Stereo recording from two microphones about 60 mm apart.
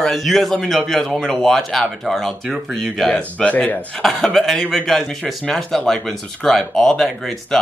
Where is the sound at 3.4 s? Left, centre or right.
Left.